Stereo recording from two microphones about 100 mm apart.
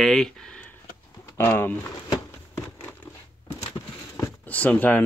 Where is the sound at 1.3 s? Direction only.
25° left (ahead or behind).